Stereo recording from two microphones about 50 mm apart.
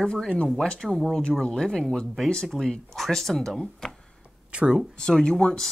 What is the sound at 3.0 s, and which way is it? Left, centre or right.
Speech, centre.